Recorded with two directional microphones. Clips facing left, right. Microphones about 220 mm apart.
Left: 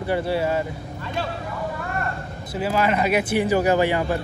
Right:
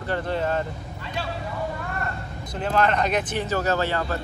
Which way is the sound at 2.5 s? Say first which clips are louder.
Left 1 dB; 5° left (ahead or behind).